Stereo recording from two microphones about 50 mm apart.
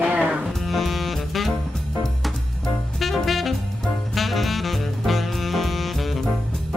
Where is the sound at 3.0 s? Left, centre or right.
Centre.